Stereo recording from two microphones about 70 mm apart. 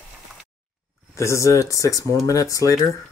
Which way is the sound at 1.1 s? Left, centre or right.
Left.